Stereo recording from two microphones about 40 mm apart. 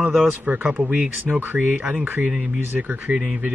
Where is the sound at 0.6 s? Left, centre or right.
Right.